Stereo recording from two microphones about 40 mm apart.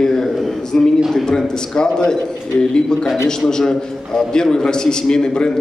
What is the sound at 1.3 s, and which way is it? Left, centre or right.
A man's voice, centre.